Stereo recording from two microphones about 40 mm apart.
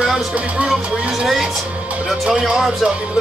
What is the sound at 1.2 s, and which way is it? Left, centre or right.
Music, centre.